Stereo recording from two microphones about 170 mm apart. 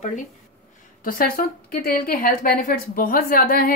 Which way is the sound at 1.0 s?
60° left (ahead or behind).